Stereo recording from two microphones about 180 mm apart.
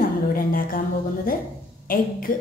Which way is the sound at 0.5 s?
50° left (ahead or behind).